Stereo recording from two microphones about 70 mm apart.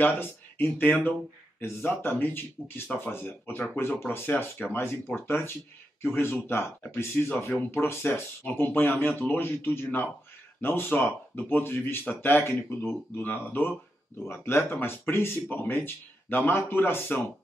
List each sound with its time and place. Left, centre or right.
0.0 s speech: left